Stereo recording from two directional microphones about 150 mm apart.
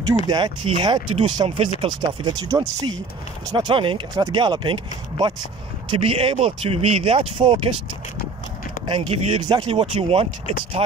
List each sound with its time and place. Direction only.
0.3 s speech: 30° right (ahead or behind)
8.8 s speech: 30° right (ahead or behind)